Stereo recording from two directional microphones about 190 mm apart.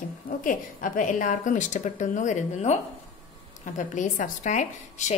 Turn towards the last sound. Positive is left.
turn(degrees=40)  # may be behind; listen again after turning